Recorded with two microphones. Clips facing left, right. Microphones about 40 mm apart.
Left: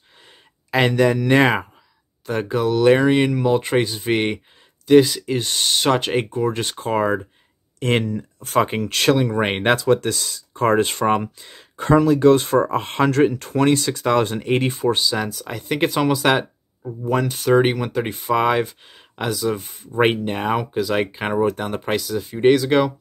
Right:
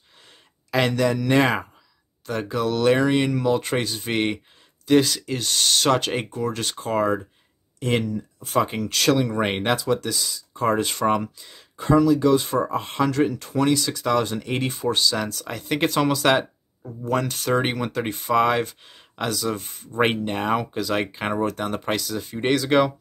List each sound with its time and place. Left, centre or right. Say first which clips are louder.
0.7 s speech: left 4 dB; left
2.6 s speech: left 4 dB; centre
2.9 s speech: left 4 dB; left
7.8 s speech: left 3 dB; left
9.2 s speech: left 3 dB; left
9.6 s speech: left 5 dB; left
15.0 s speech: left 1 dB; centre